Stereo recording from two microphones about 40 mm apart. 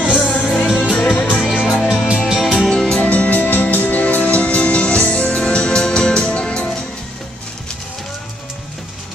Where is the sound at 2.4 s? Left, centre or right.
Centre.